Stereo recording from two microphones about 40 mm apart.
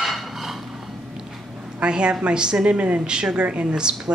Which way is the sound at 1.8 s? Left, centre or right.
Right.